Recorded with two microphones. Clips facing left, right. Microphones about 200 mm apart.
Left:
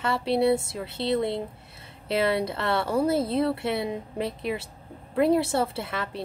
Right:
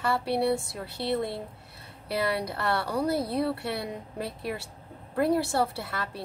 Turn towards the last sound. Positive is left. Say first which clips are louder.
# left 3 dB
turn(degrees=20)  # may be behind; listen again after turning